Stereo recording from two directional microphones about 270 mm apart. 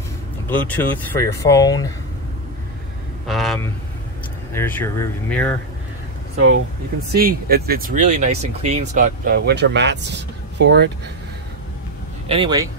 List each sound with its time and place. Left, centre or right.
0.5 s speech: centre
3.3 s speech: centre
7.1 s speech: right
12.3 s speech: centre